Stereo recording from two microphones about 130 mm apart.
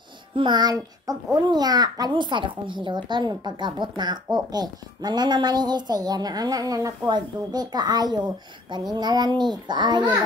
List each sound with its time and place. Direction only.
0.4 s a child's voice: 35° right (ahead or behind)